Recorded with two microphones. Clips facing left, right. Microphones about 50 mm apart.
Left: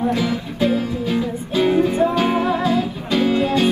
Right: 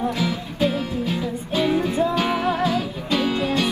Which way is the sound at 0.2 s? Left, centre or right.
Left.